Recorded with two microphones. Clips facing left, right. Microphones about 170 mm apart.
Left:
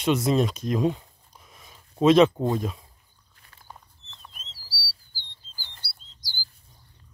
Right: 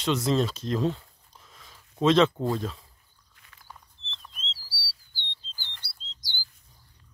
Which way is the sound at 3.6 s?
20° left (ahead or behind).